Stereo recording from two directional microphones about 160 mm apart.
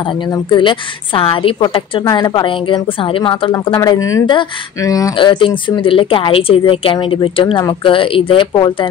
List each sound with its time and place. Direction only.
0.5 s speech: 30° left (ahead or behind)